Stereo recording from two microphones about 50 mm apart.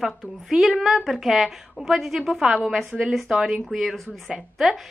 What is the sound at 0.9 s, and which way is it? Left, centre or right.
A woman's voice, centre.